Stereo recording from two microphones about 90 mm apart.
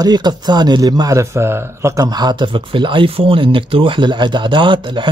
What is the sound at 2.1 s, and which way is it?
Speech, 50° right (ahead or behind).